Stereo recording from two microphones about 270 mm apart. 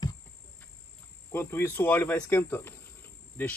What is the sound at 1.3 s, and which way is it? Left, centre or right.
Speech, centre.